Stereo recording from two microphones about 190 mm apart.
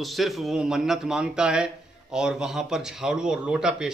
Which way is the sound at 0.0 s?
Centre (ahead or behind).